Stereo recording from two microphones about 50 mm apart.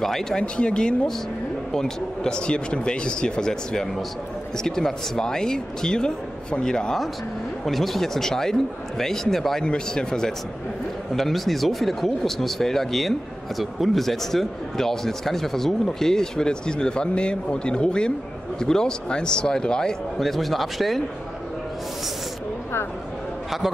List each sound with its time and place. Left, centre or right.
0.0 s speech: centre
0.4 s speech: centre
7.6 s speech: centre